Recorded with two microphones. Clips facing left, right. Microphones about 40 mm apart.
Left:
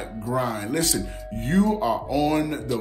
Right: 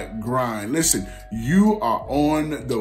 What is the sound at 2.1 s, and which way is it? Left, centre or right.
Speech, right.